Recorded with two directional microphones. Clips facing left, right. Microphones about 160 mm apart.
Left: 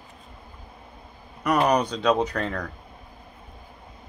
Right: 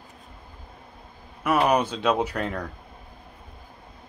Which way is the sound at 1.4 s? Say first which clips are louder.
Even; 5° right (ahead or behind).